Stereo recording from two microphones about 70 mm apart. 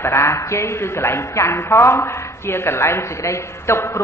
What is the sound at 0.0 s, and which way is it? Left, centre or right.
A man's voice, left.